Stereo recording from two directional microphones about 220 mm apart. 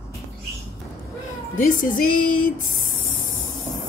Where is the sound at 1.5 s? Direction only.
40° left (ahead or behind).